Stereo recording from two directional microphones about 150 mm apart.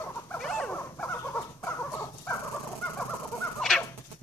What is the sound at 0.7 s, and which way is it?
Dog, 15° left (ahead or behind).